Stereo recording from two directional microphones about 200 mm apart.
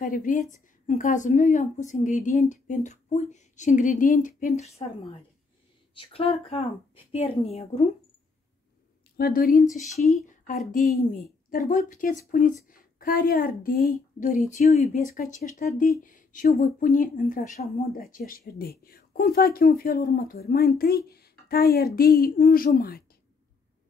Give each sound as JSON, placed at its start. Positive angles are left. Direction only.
{"t": 0.0, "sound": "a woman's voice", "side_deg": 40}
{"t": 9.1, "sound": "speech", "side_deg": 45}
{"t": 9.9, "sound": "speech", "side_deg": 0}
{"t": 10.2, "sound": "a sound", "side_deg": 40}
{"t": 10.7, "sound": "a woman's voice", "side_deg": 45}